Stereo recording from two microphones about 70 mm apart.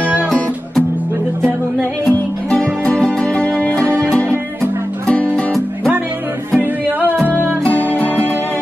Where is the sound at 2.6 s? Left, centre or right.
Centre.